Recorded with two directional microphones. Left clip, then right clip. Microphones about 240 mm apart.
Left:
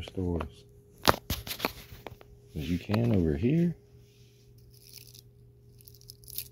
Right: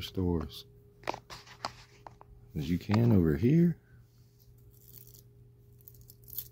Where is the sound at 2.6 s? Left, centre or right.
Right.